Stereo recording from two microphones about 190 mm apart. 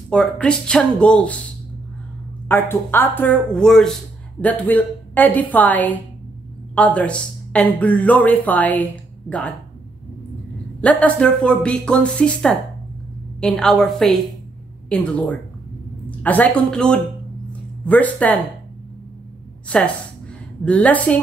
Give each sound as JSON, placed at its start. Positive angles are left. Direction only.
{"t": 0.1, "sound": "speech", "side_deg": 5}
{"t": 2.4, "sound": "speech", "side_deg": 10}
{"t": 10.8, "sound": "a woman's voice", "side_deg": 5}
{"t": 20.6, "sound": "speech", "side_deg": 10}